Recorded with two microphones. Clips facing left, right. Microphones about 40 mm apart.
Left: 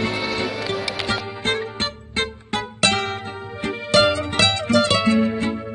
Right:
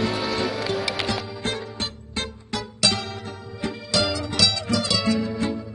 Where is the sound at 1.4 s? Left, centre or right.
Left.